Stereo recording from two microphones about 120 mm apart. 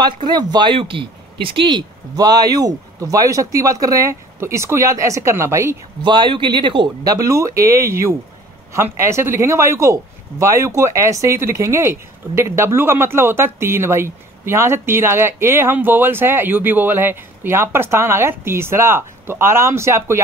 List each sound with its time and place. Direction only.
0.0 s speech: 35° right (ahead or behind)
6.0 s a man's voice: 40° right (ahead or behind)
7.2 s speech: 25° right (ahead or behind)